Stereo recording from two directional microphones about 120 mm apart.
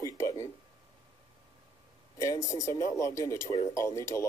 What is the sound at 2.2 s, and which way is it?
Speech, 25° left (ahead or behind).